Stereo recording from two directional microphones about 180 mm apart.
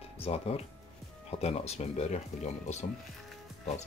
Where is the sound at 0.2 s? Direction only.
35° left (ahead or behind).